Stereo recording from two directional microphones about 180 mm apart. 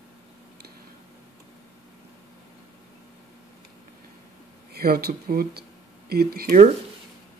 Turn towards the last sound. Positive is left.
turn(degrees=-50)  # may be behind; listen again after turning